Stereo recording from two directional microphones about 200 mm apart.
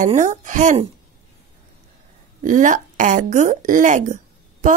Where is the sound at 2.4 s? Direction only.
40° right (ahead or behind).